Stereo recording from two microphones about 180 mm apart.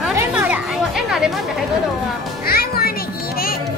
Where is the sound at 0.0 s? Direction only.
5° right (ahead or behind).